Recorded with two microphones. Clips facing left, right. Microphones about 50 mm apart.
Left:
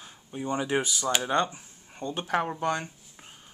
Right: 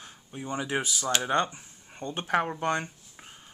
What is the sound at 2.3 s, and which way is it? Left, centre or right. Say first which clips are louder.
Speech: right 1 dB; centre.